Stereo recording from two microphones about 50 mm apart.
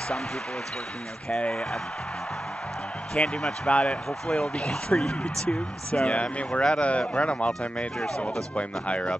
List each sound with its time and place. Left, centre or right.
3.2 s speech: left
8.5 s speech: left